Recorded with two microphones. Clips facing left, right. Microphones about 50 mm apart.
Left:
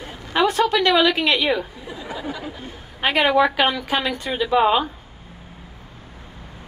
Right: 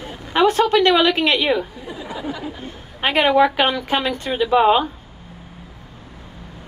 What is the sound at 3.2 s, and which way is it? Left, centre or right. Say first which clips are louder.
A woman's voice: right 2 dB; right.